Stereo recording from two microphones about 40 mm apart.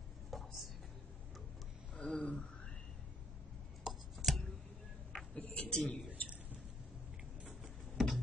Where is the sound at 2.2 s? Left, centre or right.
Left.